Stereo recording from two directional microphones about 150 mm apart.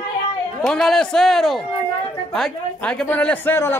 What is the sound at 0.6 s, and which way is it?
A man's voice, 5° left (ahead or behind).